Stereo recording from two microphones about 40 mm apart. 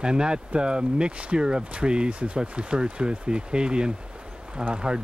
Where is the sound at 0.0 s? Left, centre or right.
Right.